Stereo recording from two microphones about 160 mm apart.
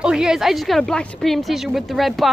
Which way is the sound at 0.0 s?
5° right (ahead or behind).